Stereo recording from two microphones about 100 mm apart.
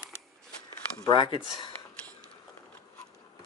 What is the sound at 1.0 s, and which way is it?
Speech, 50° left (ahead or behind).